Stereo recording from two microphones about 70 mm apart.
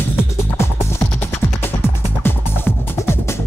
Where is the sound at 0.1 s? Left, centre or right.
Left.